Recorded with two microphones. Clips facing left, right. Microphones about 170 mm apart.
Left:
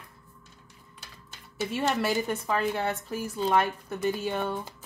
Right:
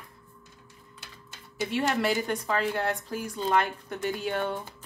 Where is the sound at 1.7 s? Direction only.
5° left (ahead or behind).